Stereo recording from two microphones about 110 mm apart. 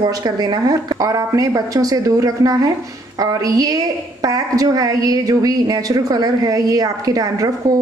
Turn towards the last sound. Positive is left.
turn(degrees=-35)  # may be behind; listen again after turning